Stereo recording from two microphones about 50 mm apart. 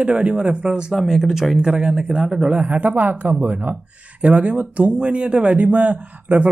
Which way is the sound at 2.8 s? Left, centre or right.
Right.